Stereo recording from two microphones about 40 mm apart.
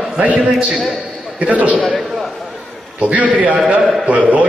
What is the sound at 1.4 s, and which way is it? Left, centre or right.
Speech, right.